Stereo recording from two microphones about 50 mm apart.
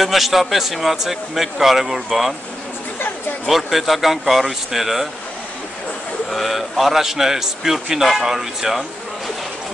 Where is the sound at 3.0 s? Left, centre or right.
Left.